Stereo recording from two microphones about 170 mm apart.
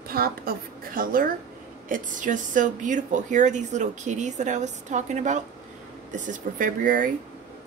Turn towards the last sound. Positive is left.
turn(degrees=-50)  # may be behind; listen again after turning